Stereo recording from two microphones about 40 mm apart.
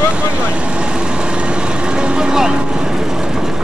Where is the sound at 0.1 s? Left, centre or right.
Right.